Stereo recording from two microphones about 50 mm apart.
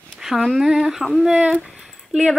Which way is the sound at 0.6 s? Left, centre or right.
Centre.